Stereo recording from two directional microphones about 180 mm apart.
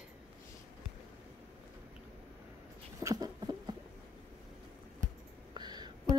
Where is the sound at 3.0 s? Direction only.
20° right (ahead or behind).